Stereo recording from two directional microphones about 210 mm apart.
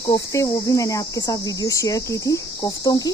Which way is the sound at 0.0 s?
15° left (ahead or behind).